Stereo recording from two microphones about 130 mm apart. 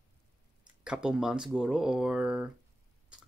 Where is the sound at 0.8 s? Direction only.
5° right (ahead or behind).